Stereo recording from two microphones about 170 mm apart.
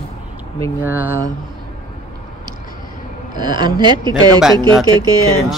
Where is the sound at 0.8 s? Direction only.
10° right (ahead or behind).